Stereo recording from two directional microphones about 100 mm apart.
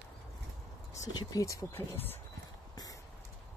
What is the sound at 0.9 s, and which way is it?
Speech, 35° left (ahead or behind).